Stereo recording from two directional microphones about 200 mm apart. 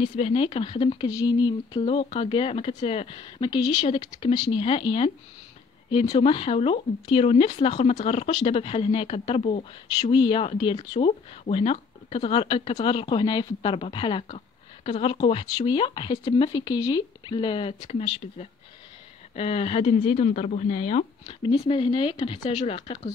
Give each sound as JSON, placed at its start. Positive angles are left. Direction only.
{"t": 0.1, "sound": "speech", "side_deg": 30}